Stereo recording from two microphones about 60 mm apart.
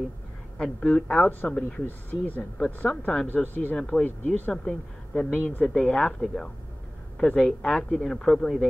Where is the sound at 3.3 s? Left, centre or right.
Left.